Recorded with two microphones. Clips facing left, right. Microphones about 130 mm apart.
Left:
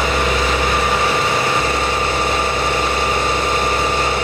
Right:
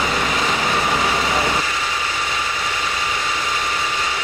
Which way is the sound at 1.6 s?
55° left (ahead or behind).